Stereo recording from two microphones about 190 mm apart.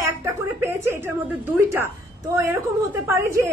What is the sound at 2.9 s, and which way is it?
Speech, 15° right (ahead or behind).